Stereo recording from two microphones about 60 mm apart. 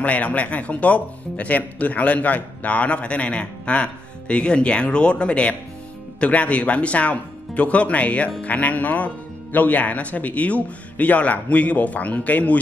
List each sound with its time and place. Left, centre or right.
0.0 s speech: left